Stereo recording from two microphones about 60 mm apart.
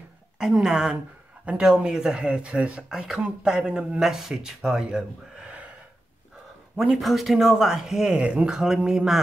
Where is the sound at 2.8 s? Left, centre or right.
Centre.